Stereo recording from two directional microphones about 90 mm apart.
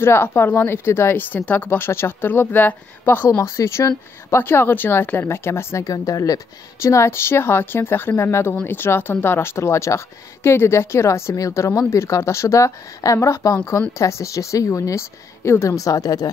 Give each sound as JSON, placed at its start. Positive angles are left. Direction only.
{"t": 0.0, "sound": "speech", "side_deg": 25}
{"t": 3.3, "sound": "a woman's voice", "side_deg": 35}